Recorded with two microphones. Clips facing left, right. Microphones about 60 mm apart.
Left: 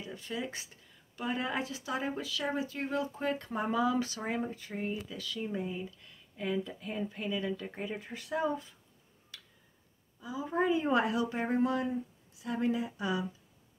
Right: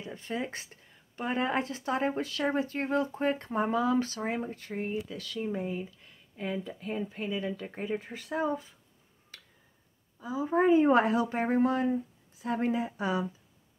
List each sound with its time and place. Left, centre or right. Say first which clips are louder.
0.0 s speech: right 3 dB; right
5.4 s speech: right 3 dB; right
5.9 s a sound: left 3 dB; right
7.1 s speech: right 1 dB; right
10.2 s speech: right 5 dB; right